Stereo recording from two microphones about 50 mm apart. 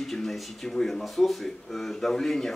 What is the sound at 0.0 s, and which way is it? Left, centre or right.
Speech, centre.